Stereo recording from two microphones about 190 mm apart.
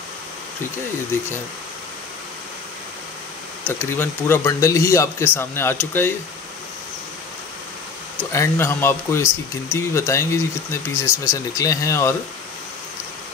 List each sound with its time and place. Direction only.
3.6 s speech: 10° left (ahead or behind)
8.3 s speech: 15° left (ahead or behind)